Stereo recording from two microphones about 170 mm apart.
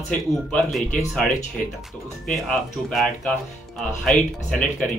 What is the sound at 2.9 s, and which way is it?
Speech, centre (ahead or behind).